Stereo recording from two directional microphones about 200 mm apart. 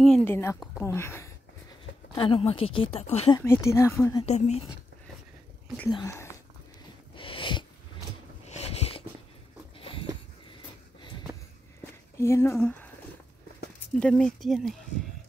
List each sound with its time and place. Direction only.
0.0 s a woman's voice: 5° left (ahead or behind)
2.1 s speech: 25° left (ahead or behind)
3.3 s speech: 15° left (ahead or behind)
4.3 s speech: 35° left (ahead or behind)
5.9 s speech: 20° left (ahead or behind)
7.2 s cat: 25° left (ahead or behind)
8.5 s a sound: 30° left (ahead or behind)
11.8 s a sound: 15° left (ahead or behind)
13.9 s speech: 5° left (ahead or behind)